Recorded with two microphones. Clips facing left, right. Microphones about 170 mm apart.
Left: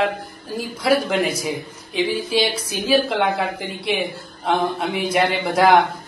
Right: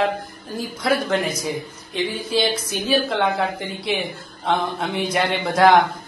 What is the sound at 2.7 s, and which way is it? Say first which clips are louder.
Speech: left 5 dB; centre (ahead or behind).